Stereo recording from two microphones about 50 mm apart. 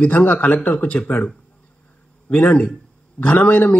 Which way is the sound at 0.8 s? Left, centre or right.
Left.